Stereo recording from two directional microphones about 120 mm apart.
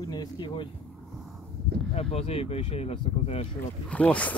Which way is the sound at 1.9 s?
55° left (ahead or behind).